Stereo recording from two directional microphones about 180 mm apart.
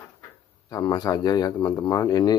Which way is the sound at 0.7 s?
20° left (ahead or behind).